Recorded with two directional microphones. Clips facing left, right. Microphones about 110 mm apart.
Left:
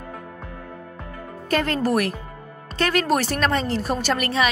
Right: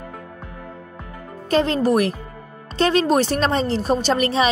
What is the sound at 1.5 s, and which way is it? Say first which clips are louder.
A woman's voice: right 4 dB; 20° right (ahead or behind).